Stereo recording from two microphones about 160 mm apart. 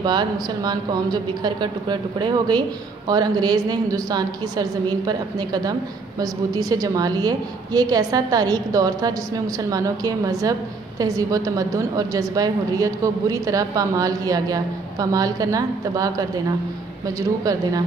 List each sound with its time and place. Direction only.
0.0 s a woman's voice: 25° right (ahead or behind)